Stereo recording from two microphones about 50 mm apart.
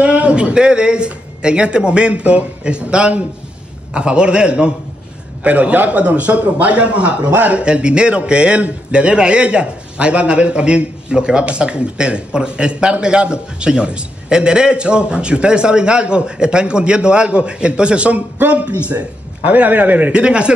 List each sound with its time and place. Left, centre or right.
0.0 s a man's voice: right
20.1 s a man's voice: right